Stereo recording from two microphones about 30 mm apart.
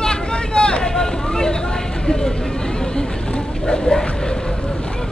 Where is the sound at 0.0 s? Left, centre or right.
Left.